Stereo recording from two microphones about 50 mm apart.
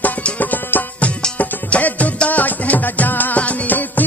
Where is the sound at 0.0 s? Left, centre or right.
Left.